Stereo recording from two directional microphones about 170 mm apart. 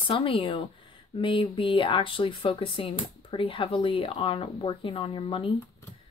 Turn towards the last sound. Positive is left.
turn(degrees=30)  # may be behind; listen again after turning